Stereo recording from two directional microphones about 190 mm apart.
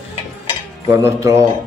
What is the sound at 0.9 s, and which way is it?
Speech, 15° right (ahead or behind).